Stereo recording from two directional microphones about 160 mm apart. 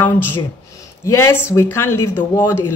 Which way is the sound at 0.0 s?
15° left (ahead or behind).